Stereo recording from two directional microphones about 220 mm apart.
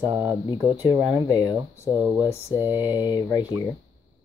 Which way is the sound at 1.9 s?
10° right (ahead or behind).